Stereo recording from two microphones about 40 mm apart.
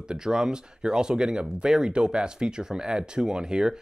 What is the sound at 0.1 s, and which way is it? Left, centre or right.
Speech, centre.